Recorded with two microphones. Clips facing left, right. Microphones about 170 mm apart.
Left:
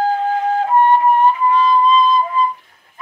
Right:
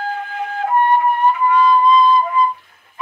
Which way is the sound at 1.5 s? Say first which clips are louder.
Right 1 dB; 30° left (ahead or behind).